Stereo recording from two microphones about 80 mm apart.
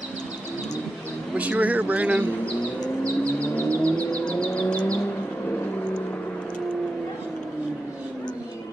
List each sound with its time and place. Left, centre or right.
1.3 s a man's voice: centre
3.5 s vehicle: centre